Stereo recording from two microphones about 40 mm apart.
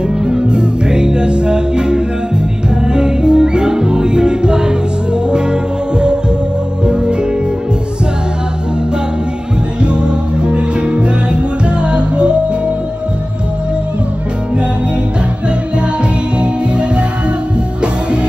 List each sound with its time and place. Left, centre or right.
0.2 s music: centre
9.8 s music: right
16.3 s music: right